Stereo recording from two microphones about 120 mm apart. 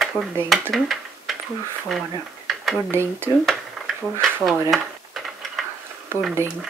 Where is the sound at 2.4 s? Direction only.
Centre (ahead or behind).